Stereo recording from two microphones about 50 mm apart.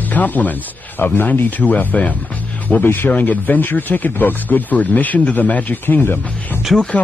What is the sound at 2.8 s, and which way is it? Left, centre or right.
Speech, left.